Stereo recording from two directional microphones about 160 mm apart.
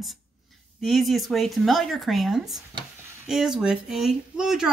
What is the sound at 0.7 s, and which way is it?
Speech, centre (ahead or behind).